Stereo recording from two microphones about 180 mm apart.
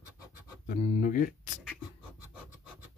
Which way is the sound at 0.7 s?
35° left (ahead or behind).